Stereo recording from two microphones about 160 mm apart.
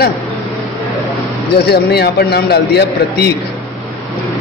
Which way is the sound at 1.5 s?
90° left.